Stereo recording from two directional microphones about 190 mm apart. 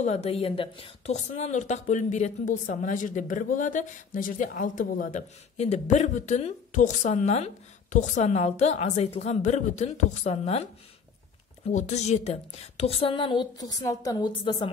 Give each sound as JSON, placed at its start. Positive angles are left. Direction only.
{"t": 0.0, "sound": "a woman's voice", "side_deg": 35}